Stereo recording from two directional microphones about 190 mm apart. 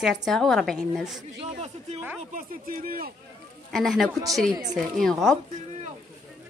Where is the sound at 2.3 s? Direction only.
45° right (ahead or behind).